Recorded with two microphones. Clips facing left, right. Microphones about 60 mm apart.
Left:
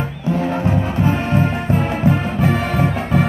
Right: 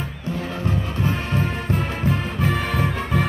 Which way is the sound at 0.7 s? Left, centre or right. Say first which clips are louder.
Left 3 dB; centre.